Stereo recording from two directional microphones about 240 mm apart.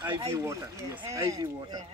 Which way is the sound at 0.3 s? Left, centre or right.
Centre.